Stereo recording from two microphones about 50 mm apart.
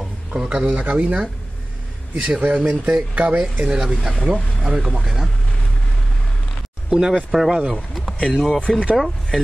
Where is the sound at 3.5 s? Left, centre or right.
Centre.